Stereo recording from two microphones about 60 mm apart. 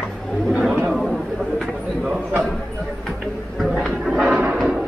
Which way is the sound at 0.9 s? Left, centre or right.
Centre.